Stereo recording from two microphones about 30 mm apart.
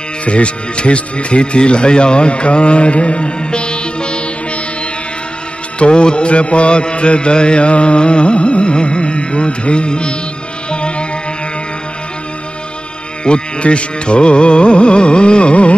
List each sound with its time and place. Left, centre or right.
0.2 s music: left
5.8 s music: left
13.2 s music: left